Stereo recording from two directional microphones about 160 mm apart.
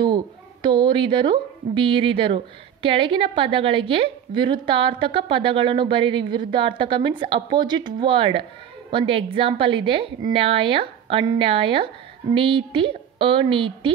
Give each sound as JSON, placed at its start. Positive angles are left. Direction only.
{"t": 0.0, "sound": "a woman's voice", "side_deg": -30}